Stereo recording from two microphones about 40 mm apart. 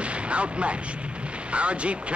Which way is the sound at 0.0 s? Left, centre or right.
Right.